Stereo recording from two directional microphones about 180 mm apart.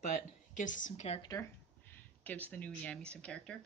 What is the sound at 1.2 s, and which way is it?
Speech, 20° left (ahead or behind).